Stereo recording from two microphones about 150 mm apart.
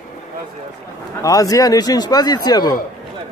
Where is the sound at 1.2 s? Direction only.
25° left (ahead or behind).